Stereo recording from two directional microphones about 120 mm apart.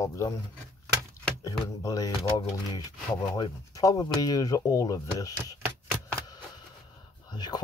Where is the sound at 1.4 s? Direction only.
30° left (ahead or behind).